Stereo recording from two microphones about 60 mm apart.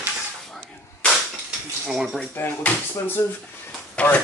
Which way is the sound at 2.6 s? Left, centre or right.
Left.